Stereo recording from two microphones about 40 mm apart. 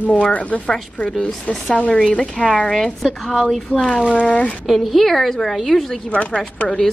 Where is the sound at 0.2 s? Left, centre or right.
Left.